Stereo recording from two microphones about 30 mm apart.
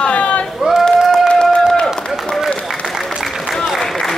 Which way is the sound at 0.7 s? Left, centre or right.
Right.